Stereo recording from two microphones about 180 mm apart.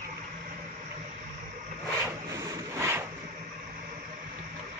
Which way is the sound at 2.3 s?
15° right (ahead or behind).